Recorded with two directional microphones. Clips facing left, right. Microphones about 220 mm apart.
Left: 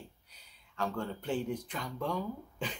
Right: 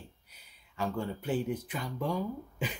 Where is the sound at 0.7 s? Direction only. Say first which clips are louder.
Right 2 dB; 10° right (ahead or behind).